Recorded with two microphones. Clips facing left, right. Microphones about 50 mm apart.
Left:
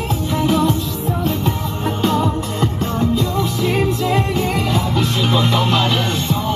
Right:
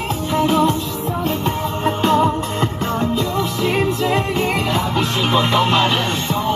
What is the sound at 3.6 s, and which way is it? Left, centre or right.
Music, right.